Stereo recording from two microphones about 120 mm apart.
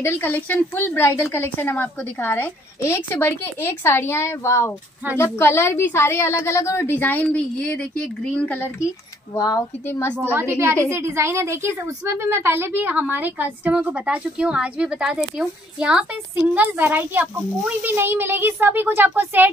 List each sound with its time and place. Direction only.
0.0 s a woman's voice: 20° left (ahead or behind)
10.3 s a woman's voice: 20° right (ahead or behind)